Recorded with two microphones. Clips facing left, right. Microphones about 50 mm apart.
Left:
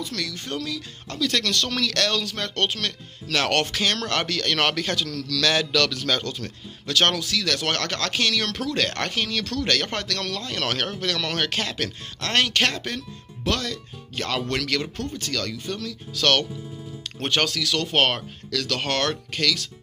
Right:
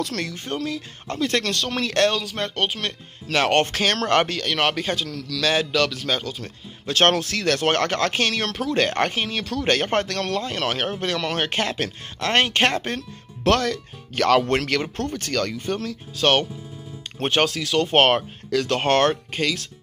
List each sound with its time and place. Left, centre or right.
0.1 s a man's voice: right; by 2.8 s centre
2.8 s speech: right
3.6 s speech: right
4.4 s a man's voice: centre
6.4 s speech: right
13.4 s speech: right
14.5 s speech: right
16.2 s speech: right